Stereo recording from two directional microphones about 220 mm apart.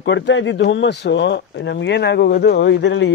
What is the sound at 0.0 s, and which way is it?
Speech, 55° left (ahead or behind).